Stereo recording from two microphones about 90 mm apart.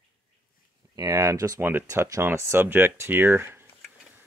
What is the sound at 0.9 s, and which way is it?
Speech, 40° right (ahead or behind).